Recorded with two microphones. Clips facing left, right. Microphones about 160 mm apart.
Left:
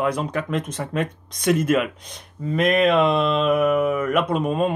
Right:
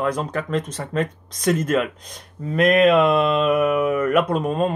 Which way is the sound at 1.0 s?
40° right (ahead or behind).